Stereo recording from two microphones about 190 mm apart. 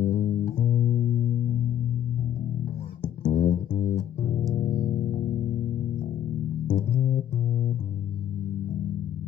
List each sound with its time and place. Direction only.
0.0 s music: 45° left (ahead or behind)
3.3 s music: 45° left (ahead or behind)
6.7 s bass guitar: 40° left (ahead or behind)